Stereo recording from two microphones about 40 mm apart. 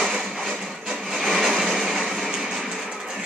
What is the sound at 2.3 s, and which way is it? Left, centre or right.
Music, centre.